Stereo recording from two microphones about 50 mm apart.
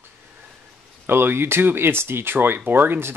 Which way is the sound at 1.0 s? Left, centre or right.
Right.